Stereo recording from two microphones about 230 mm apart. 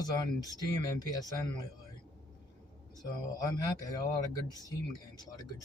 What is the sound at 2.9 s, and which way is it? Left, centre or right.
Speech, centre.